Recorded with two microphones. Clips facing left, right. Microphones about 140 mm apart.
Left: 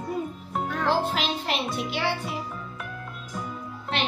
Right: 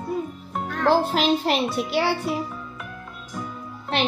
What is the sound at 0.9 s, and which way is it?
Speech, 40° right (ahead or behind).